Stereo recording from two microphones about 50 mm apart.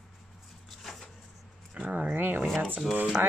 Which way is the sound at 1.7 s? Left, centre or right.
Right.